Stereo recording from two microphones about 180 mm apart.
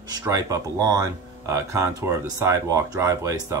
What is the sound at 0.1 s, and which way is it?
Speech, 20° right (ahead or behind).